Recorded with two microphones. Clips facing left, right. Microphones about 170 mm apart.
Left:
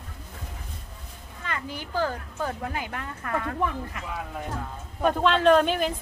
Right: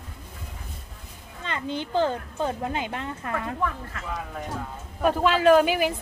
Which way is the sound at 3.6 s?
15° left (ahead or behind).